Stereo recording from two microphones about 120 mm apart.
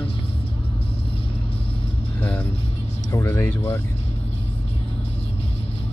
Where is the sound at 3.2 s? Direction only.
20° left (ahead or behind).